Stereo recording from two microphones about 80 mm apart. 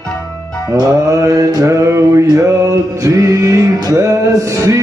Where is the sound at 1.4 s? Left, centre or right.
Right.